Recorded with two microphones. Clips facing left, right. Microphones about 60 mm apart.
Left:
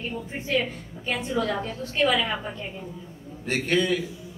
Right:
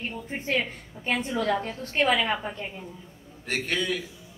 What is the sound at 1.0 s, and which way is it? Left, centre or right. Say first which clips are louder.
A woman's voice: even; right.